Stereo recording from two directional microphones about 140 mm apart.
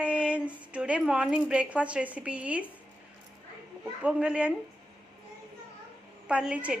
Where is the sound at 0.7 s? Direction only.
10° right (ahead or behind).